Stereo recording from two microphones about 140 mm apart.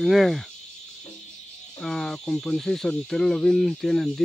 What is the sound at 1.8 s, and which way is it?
Speech, 5° left (ahead or behind).